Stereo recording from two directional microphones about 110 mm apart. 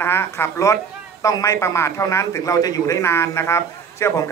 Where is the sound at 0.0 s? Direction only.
20° left (ahead or behind).